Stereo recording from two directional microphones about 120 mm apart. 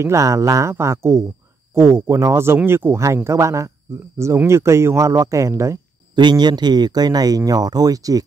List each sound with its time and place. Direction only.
0.0 s speech: 25° right (ahead or behind)
6.1 s speech: 40° right (ahead or behind)